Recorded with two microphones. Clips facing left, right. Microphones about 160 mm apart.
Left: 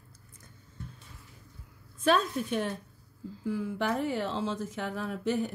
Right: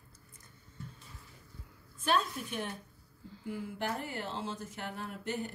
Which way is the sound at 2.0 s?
90° left.